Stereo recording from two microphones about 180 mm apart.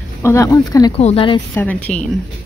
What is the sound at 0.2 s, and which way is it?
Speech, 15° left (ahead or behind).